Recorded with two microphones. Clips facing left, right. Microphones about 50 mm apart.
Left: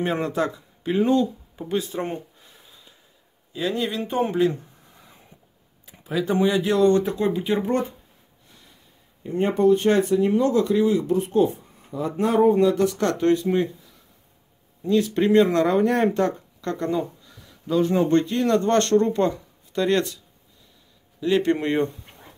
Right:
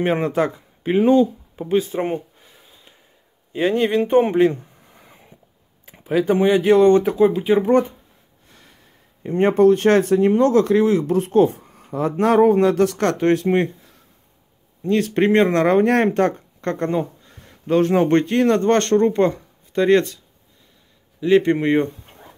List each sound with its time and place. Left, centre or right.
0.0 s speech: right
3.5 s speech: right
7.2 s speech: centre
7.5 s speech: right
9.2 s speech: right
10.1 s speech: right
17.4 s speech: right
21.2 s speech: right